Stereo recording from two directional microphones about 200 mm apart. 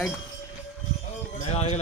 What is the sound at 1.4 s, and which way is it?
Music, 30° left (ahead or behind).